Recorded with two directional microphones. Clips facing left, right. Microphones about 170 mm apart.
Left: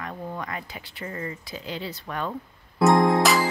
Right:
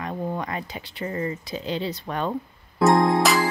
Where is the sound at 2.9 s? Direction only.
Centre (ahead or behind).